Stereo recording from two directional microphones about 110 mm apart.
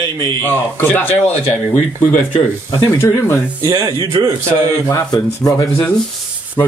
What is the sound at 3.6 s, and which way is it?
Speech, 35° right (ahead or behind).